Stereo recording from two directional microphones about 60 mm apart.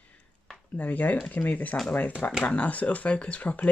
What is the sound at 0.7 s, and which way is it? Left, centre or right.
Speech, left.